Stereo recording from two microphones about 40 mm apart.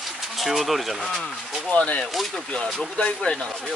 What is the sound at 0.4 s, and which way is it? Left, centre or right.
Speech, centre.